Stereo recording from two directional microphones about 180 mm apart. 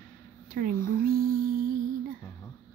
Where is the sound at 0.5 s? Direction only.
50° right (ahead or behind).